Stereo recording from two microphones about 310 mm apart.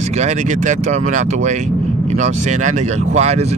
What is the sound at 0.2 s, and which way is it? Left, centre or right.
Speech, right.